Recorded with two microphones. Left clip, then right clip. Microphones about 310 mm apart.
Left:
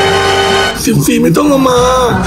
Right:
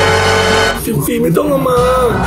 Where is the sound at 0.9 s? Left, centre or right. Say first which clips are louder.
Left 4 dB; left.